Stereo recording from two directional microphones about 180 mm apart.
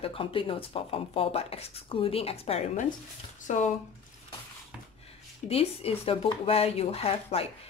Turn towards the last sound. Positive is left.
turn(degrees=35)  # may be behind; listen again after turning